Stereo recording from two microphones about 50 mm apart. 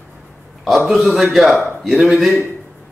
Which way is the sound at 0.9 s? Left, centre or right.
Centre.